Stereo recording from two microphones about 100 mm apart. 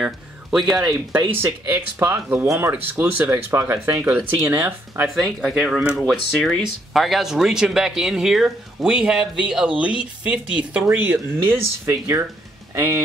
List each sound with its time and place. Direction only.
0.0 s speech: centre (ahead or behind)
1.1 s speech: 20° right (ahead or behind)
5.1 s speech: 5° left (ahead or behind); by 13.0 s 25° right (ahead or behind)